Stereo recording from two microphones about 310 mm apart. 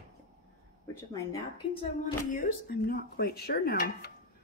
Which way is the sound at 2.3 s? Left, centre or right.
Left.